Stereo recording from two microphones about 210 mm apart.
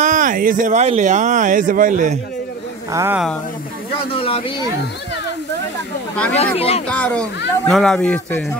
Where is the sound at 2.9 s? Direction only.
15° right (ahead or behind).